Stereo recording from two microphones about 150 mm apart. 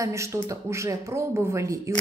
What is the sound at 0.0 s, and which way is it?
Speech, 20° right (ahead or behind).